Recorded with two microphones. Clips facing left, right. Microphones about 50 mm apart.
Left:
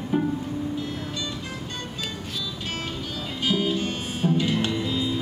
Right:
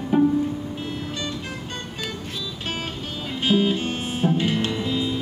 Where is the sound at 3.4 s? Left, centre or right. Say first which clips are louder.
Right 4 dB; right.